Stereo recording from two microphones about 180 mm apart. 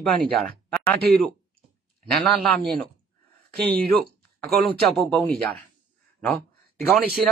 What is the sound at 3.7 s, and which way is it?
Speech, 60° right (ahead or behind).